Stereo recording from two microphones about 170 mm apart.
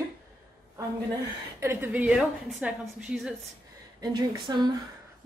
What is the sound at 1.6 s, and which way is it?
A woman's voice, 15° right (ahead or behind).